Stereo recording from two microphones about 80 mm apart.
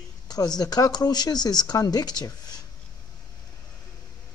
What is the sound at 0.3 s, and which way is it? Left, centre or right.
Speech, left.